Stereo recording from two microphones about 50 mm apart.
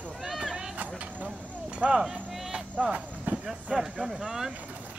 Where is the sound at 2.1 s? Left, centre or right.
Centre.